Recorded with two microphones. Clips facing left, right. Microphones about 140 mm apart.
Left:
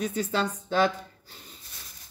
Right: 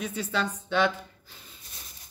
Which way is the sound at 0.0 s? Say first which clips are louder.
Left 2 dB; 40° left (ahead or behind).